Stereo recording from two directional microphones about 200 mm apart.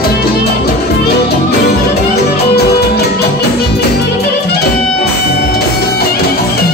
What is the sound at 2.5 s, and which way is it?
Music, 55° left (ahead or behind).